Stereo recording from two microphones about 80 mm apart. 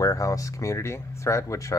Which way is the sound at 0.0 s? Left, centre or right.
Left.